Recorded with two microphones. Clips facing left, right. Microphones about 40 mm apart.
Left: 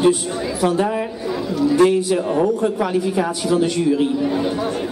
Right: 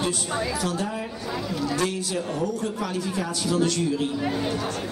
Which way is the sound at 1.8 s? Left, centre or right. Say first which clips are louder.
Left 11 dB; left.